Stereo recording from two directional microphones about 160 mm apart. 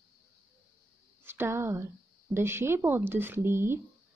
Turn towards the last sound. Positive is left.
turn(degrees=-15)  # may be behind; listen again after turning